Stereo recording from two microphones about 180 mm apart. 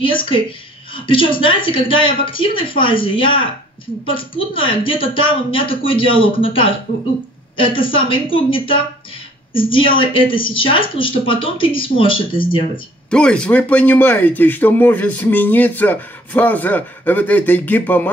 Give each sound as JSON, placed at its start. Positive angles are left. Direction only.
{"t": 0.0, "sound": "speech", "side_deg": 30}
{"t": 13.1, "sound": "speech", "side_deg": 5}